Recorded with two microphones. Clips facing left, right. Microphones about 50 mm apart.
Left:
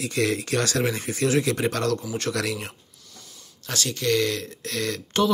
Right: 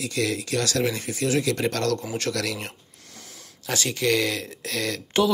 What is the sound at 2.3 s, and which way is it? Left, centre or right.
Speech, left.